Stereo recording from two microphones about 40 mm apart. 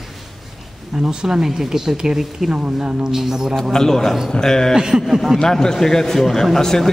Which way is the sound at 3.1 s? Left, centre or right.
Centre.